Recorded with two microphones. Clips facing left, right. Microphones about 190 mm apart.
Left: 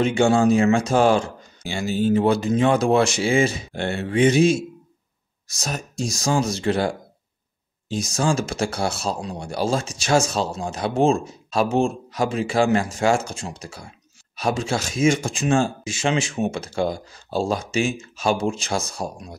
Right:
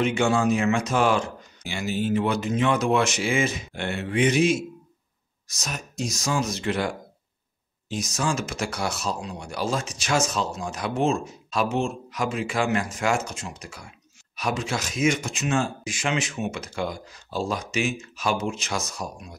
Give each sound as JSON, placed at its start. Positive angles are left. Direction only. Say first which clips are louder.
{"t": 0.0, "sound": "speech", "louder": "left 5 dB", "side_deg": 30}